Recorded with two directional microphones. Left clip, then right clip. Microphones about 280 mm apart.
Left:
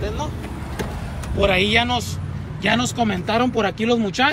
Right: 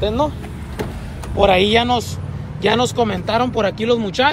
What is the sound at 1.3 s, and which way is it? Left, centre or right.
Speech, centre.